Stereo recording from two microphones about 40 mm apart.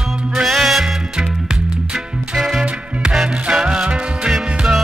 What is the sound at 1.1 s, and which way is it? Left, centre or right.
Music, centre.